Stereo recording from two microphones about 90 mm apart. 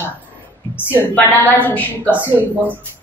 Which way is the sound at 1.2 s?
20° left (ahead or behind).